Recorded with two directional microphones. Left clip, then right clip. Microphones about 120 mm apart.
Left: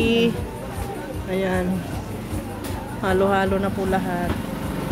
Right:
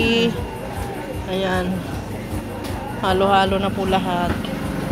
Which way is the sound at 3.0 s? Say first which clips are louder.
Right 3 dB; 45° left (ahead or behind).